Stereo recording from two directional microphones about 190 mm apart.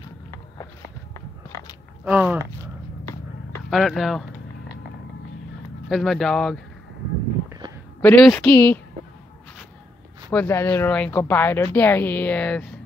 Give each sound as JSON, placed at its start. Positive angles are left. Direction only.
{"t": 2.0, "sound": "speech", "side_deg": -10}
{"t": 3.7, "sound": "speech", "side_deg": 0}
{"t": 5.9, "sound": "speech", "side_deg": 0}
{"t": 7.4, "sound": "a sound", "side_deg": -20}
{"t": 8.0, "sound": "speech", "side_deg": 5}
{"t": 10.3, "sound": "speech", "side_deg": 10}